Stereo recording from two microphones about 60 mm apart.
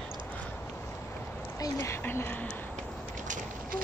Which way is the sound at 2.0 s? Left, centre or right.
Left.